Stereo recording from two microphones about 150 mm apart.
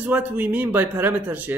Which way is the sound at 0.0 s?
10° right (ahead or behind).